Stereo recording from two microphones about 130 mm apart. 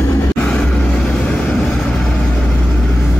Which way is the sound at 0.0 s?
25° left (ahead or behind).